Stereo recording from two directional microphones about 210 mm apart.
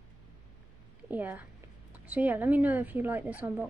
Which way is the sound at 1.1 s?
10° right (ahead or behind).